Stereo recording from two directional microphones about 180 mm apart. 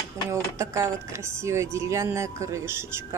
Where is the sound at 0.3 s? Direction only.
15° right (ahead or behind).